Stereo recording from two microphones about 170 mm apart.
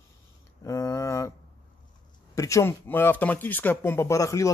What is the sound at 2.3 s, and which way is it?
Speech, 20° left (ahead or behind).